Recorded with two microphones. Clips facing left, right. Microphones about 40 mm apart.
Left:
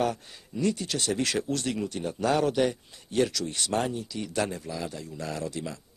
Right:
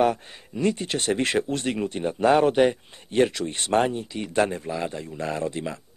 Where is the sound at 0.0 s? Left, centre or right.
Right.